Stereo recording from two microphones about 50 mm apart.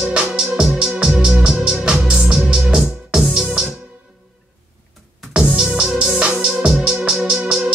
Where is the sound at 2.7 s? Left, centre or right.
Centre.